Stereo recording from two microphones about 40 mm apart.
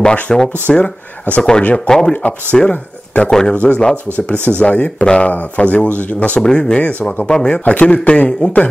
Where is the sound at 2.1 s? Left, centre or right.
Left.